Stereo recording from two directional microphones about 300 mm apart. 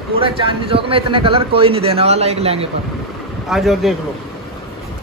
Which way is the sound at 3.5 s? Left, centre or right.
Centre.